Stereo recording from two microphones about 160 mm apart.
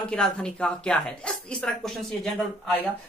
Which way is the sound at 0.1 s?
5° left (ahead or behind).